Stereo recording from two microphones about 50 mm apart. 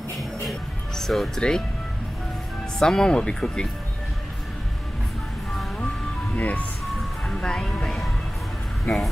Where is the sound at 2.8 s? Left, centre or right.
Centre.